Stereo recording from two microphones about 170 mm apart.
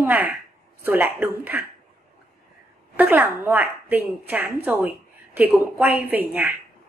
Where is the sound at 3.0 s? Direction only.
10° right (ahead or behind).